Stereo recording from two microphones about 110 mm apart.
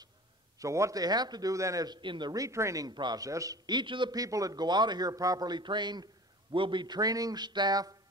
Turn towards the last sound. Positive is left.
turn(degrees=-35)  # may be behind; listen again after turning